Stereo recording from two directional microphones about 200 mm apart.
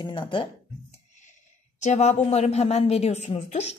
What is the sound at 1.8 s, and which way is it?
Speech, 35° left (ahead or behind).